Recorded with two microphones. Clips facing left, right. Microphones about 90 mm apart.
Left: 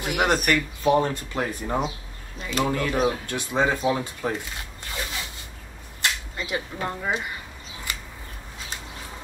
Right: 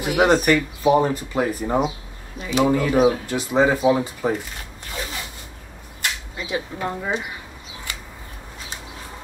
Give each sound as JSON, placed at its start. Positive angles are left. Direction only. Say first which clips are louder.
{"t": 0.0, "sound": "speech", "louder": "right 6 dB", "side_deg": 0}
{"t": 4.9, "sound": "a sound", "louder": "right 2 dB", "side_deg": 0}
{"t": 6.3, "sound": "speech", "louder": "right 2 dB", "side_deg": -5}